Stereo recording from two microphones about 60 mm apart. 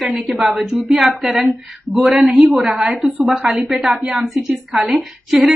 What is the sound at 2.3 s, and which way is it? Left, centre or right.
Speech, right.